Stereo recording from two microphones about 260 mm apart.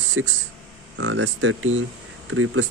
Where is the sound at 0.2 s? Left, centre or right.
Right.